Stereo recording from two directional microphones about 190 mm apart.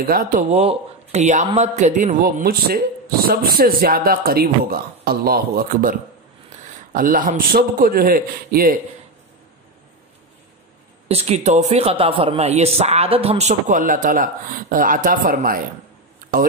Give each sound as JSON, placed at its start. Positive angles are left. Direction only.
{"t": 0.0, "sound": "speech", "side_deg": -50}
{"t": 0.5, "sound": "a man's voice", "side_deg": -35}
{"t": 11.1, "sound": "a man's voice", "side_deg": -35}